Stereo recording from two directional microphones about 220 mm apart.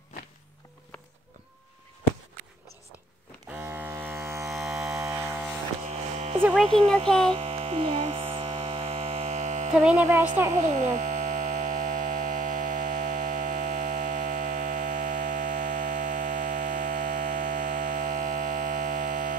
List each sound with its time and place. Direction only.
3.4 s a sound: 10° right (ahead or behind)
4.5 s a sound: centre (ahead or behind)
5.0 s electric shaver: 10° right (ahead or behind)
5.9 s electric shaver: 30° right (ahead or behind)
6.7 s speech: 5° left (ahead or behind)
7.2 s mains hum: 25° right (ahead or behind)
9.9 s speech: 10° right (ahead or behind)
10.5 s mains hum: 35° right (ahead or behind)